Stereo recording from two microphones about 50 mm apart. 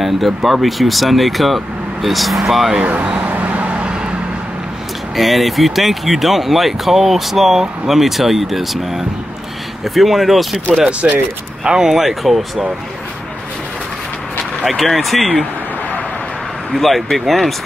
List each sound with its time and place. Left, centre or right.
0.0 s speech: centre
2.8 s a sound: right
5.1 s speech: centre
11.6 s speech: centre
14.6 s speech: centre
16.7 s speech: centre